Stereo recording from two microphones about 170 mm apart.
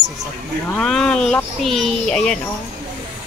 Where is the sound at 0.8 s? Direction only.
5° left (ahead or behind).